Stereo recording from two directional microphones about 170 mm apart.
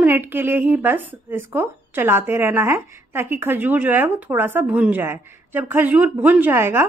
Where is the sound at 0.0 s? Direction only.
10° right (ahead or behind).